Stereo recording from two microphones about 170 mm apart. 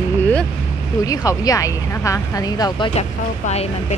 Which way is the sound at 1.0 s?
20° left (ahead or behind).